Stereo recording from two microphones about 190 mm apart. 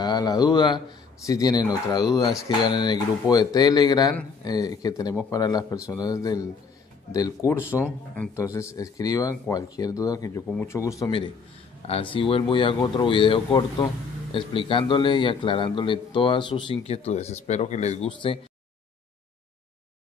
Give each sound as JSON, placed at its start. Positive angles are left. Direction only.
{"t": 0.0, "sound": "a man's voice", "side_deg": 20}